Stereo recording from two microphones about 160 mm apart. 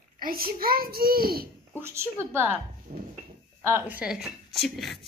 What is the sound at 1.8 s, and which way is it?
Speech, 15° right (ahead or behind).